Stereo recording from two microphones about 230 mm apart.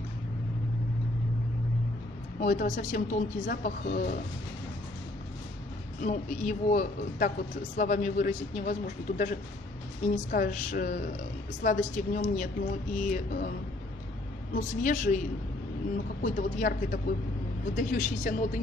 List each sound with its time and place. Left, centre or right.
2.4 s speech: left
6.0 s speech: left
14.5 s speech: left
16.2 s speech: left